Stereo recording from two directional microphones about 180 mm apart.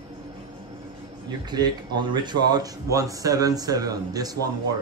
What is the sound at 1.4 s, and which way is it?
Speech, 25° right (ahead or behind).